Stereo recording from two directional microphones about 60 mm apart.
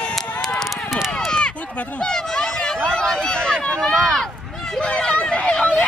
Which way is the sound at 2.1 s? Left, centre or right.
Centre.